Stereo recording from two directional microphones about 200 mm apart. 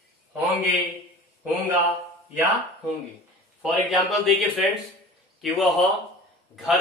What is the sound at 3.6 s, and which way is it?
Speech, centre (ahead or behind).